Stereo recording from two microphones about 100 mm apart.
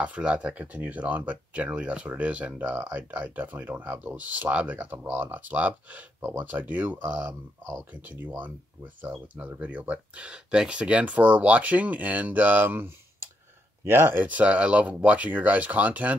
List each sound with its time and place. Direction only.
0.0 s speech: 10° right (ahead or behind)